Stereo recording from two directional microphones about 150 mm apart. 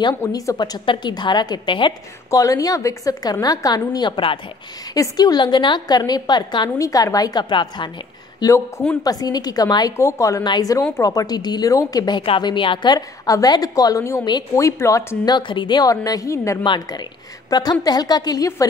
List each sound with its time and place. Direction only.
0.2 s a woman's voice: 25° left (ahead or behind)
8.4 s a woman's voice: 20° left (ahead or behind)
10.8 s a woman's voice: 10° left (ahead or behind)
11.1 s a woman's voice: 25° left (ahead or behind)